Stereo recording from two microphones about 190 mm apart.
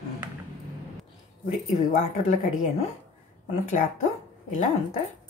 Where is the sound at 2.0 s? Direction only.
40° left (ahead or behind).